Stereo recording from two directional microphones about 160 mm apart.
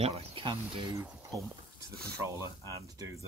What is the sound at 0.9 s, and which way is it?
Speech, 15° right (ahead or behind).